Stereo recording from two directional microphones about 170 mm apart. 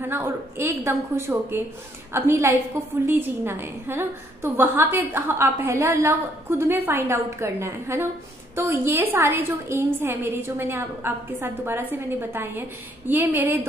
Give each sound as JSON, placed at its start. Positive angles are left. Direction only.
{"t": 0.0, "sound": "a woman's voice", "side_deg": -15}